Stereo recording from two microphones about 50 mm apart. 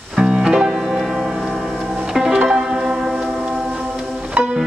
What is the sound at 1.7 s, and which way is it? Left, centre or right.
Pizzicato, centre.